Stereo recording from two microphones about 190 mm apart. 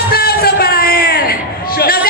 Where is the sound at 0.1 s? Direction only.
55° left (ahead or behind).